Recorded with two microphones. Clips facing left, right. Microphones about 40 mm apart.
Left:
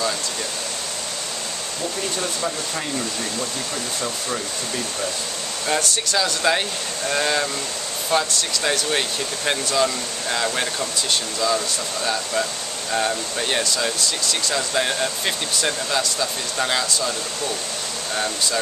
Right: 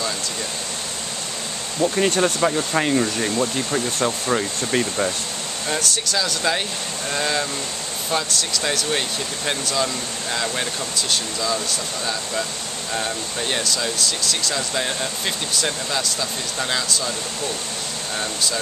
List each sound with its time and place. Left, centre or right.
1.8 s speech: right
2.1 s speech: right
5.7 s speech: centre
18.1 s speech: centre